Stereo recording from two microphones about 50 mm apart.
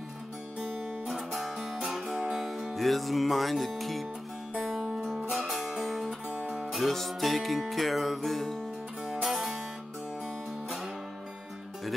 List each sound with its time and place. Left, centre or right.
1.0 s music: centre
4.7 s music: centre
6.3 s music: right
6.7 s music: centre